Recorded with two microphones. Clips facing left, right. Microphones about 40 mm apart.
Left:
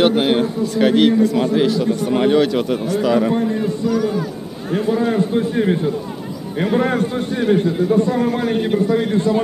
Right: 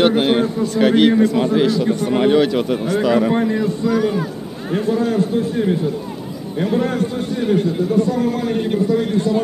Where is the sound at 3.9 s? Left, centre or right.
Right.